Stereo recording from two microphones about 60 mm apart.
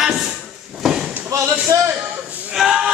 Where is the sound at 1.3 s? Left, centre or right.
Right.